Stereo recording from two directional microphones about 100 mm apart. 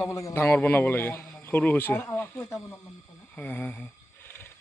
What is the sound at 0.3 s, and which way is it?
A man's voice, 20° left (ahead or behind).